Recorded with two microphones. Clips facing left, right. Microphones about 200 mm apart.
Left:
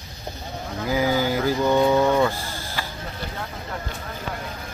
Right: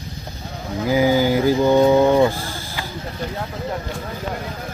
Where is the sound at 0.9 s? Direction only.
15° right (ahead or behind).